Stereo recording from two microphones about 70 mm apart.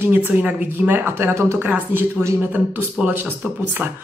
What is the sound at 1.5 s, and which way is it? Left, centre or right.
Speech, right.